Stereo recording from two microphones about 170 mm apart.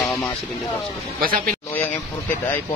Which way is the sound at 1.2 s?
55° right (ahead or behind).